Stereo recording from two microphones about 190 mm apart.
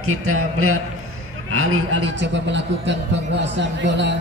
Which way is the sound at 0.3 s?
90° right.